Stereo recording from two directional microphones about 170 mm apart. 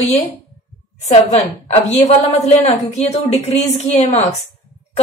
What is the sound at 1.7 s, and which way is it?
A woman's voice, 35° left (ahead or behind).